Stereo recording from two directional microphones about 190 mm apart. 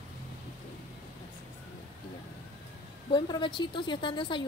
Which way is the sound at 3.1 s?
25° left (ahead or behind).